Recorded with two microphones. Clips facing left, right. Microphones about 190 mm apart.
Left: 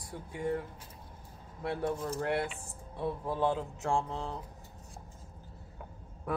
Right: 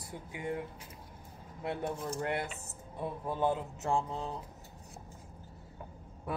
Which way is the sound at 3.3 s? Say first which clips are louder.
Right 1 dB; 5° right (ahead or behind).